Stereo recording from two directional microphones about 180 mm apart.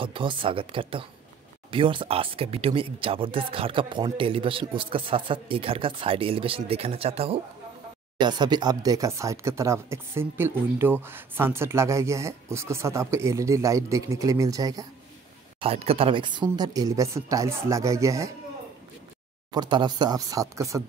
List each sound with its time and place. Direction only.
0.0 s speech: 30° right (ahead or behind)
15.6 s speech: 35° right (ahead or behind); by 18.3 s 15° right (ahead or behind)
19.5 s speech: 25° right (ahead or behind)